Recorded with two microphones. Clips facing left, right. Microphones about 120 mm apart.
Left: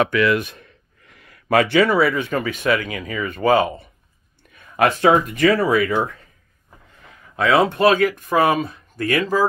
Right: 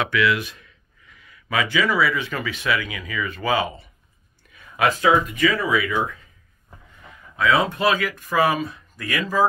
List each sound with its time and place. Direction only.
0.0 s speech: 45° left (ahead or behind); by 5.1 s 60° left (ahead or behind)
5.5 s speech: 50° left (ahead or behind)
7.5 s speech: 70° left (ahead or behind)